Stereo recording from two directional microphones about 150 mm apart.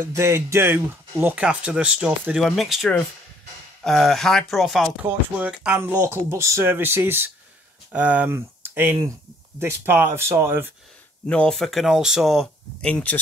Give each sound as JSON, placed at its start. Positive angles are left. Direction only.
{"t": 0.0, "sound": "speech", "side_deg": -20}
{"t": 11.2, "sound": "speech", "side_deg": 5}